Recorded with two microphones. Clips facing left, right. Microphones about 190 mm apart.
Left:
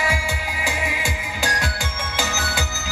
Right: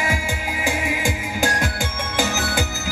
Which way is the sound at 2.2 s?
50° right (ahead or behind).